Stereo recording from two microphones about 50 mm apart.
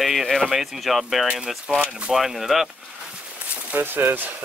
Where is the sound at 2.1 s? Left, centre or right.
Centre.